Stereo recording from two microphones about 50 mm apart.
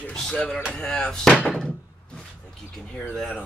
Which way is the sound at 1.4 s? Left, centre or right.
Centre.